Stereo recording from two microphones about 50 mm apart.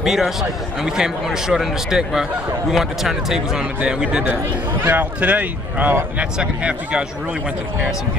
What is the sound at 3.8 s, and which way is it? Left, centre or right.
Speech, centre.